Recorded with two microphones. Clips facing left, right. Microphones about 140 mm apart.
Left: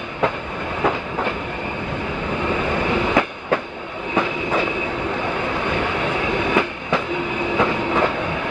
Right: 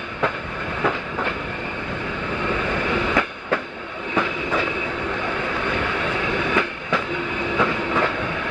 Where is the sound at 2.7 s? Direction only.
25° left (ahead or behind).